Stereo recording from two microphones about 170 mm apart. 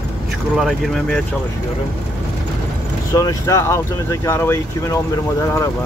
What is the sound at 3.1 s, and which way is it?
Speech, 20° left (ahead or behind).